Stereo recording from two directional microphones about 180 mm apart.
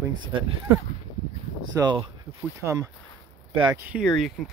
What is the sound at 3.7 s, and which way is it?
Speech, 5° right (ahead or behind).